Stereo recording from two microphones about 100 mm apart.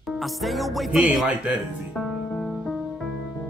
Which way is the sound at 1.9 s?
5° right (ahead or behind).